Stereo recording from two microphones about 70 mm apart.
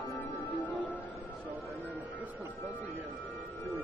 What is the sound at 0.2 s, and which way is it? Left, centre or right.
Music, left.